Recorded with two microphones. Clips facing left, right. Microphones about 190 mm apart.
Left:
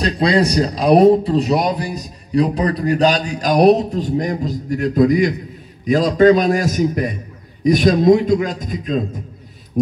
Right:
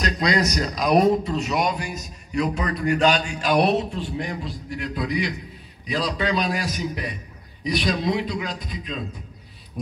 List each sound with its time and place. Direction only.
0.0 s a man's voice: 30° left (ahead or behind)